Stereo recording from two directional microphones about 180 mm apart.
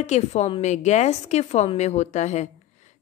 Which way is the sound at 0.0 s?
40° left (ahead or behind).